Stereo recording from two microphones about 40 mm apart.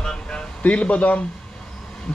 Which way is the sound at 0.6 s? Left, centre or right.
Left.